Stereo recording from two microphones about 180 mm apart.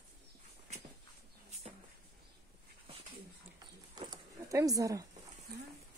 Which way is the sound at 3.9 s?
20° right (ahead or behind).